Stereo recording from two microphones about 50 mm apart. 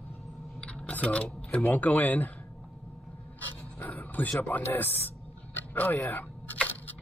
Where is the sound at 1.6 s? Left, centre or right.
Left.